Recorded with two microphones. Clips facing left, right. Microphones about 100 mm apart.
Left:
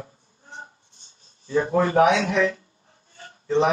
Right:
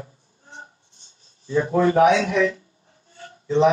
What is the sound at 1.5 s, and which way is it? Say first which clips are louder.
Speech: right 2 dB; 55° left (ahead or behind).